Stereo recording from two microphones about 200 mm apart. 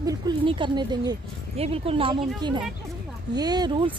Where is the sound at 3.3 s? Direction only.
20° right (ahead or behind).